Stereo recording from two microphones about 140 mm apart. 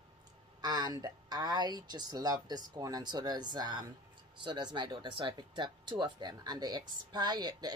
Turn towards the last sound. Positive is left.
turn(degrees=-30)  # may be behind; listen again after turning